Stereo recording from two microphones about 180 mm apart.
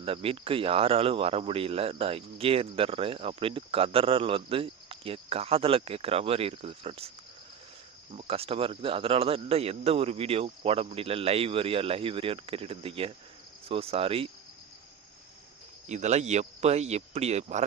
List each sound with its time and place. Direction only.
0.0 s speech: 30° right (ahead or behind)
8.1 s speech: 35° right (ahead or behind)
15.9 s speech: 40° right (ahead or behind)